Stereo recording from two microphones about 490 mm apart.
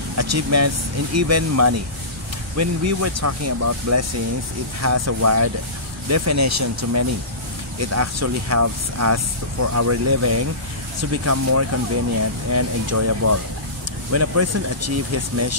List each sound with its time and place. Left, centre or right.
0.2 s speech: right